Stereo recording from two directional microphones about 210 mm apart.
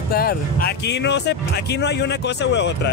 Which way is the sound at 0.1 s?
45° left (ahead or behind).